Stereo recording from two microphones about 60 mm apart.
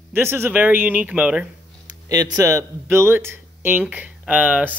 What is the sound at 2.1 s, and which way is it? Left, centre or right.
Speech, right.